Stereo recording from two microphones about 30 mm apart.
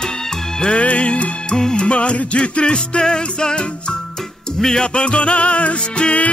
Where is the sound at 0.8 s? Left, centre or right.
Left.